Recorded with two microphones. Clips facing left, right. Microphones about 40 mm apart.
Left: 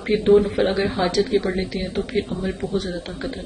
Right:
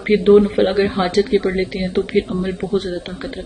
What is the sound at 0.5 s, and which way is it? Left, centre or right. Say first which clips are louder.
A woman's voice: right 5 dB; right.